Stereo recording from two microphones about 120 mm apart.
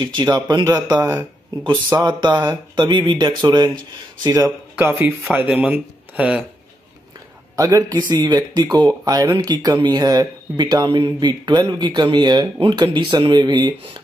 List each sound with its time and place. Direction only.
0.0 s speech: 40° right (ahead or behind)
1.0 s speech: 15° right (ahead or behind)
2.0 s speech: 40° right (ahead or behind)
5.0 s speech: 15° right (ahead or behind)
7.5 s speech: 30° right (ahead or behind)